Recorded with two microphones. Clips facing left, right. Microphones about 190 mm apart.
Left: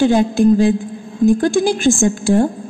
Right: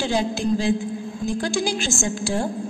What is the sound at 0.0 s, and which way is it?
A woman's voice, 55° left (ahead or behind).